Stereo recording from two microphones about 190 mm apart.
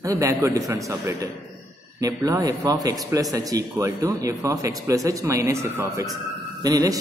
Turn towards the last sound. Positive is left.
turn(degrees=-20)  # may be behind; listen again after turning